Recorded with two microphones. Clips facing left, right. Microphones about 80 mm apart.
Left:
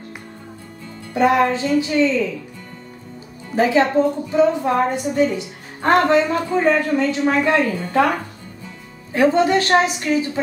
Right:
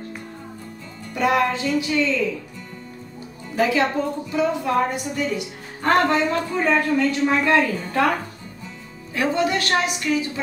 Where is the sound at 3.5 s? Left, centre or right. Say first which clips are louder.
Left 4 dB; left.